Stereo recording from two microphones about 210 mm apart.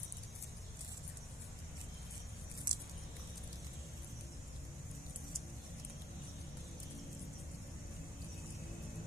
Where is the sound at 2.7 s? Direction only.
20° right (ahead or behind).